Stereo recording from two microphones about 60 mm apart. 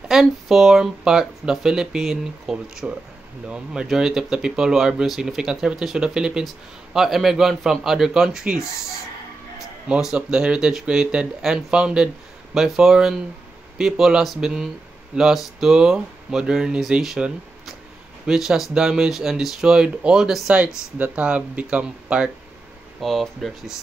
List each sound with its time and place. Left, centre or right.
0.1 s speech: centre
9.8 s speech: centre
18.2 s speech: centre
20.5 s speech: right
22.9 s speech: centre